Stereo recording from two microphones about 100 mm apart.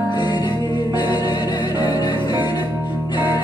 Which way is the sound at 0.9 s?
45° left (ahead or behind).